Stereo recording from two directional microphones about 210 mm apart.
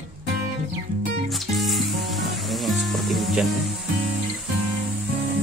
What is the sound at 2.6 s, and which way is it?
Music, centre (ahead or behind).